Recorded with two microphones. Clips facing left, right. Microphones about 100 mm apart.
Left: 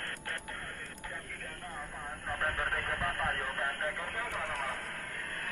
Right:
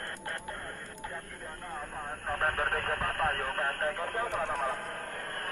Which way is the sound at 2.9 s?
35° right (ahead or behind).